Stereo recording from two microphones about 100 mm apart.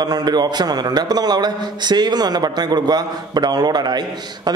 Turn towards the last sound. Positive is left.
turn(degrees=-45)  # may be behind; listen again after turning